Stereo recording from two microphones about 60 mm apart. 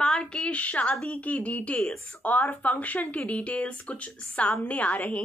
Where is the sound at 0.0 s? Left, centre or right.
Centre.